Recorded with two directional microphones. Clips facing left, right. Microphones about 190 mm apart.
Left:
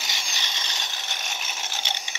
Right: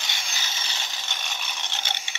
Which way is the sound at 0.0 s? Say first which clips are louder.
Left 1 dB; centre (ahead or behind).